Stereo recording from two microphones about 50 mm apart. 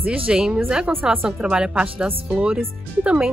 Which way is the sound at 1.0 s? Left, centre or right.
Centre.